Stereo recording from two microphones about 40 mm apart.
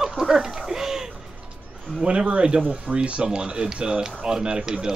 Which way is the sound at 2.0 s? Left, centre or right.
Right.